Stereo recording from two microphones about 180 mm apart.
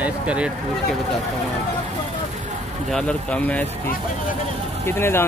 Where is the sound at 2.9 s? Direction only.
5° left (ahead or behind).